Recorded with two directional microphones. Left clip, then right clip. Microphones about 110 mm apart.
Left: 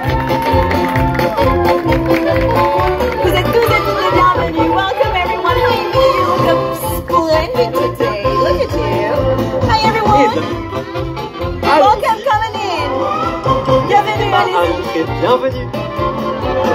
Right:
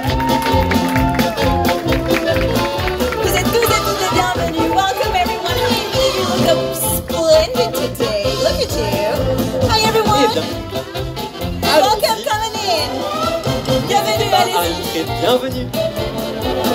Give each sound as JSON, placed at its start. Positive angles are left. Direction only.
{"t": 1.4, "sound": "music", "side_deg": -30}
{"t": 11.6, "sound": "music", "side_deg": -60}